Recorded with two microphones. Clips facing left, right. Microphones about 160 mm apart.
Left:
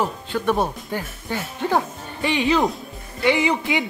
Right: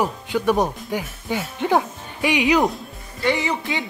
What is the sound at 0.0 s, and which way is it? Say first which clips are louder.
Speech: right 2 dB; 15° right (ahead or behind).